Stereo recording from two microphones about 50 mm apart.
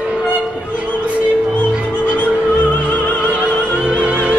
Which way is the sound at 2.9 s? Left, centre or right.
Left.